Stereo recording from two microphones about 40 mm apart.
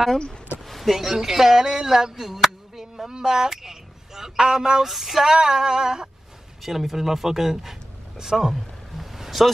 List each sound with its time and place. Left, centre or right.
0.7 s speech: centre
4.8 s speech: centre
6.6 s speech: centre
8.2 s a sound: centre